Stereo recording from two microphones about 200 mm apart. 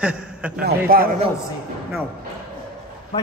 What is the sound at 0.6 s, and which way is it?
Speech, 45° right (ahead or behind).